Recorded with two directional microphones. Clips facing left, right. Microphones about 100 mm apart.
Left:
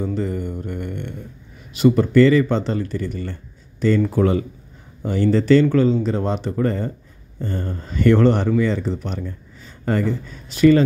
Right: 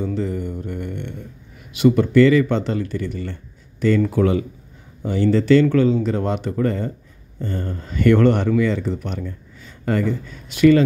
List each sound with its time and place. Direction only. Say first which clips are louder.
0.0 s mantra: even; 40° left (ahead or behind)
1.9 s speech: even; 35° left (ahead or behind)